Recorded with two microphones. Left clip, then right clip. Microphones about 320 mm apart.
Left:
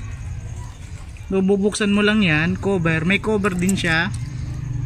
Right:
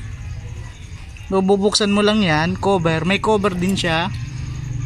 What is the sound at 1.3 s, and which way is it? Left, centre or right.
Speech, centre.